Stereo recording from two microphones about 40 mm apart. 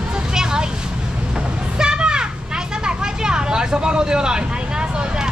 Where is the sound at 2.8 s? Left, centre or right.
Centre.